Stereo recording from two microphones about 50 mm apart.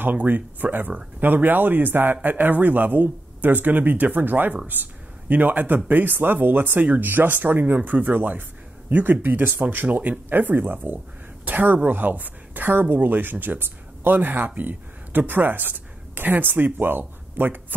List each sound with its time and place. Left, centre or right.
0.0 s speech: right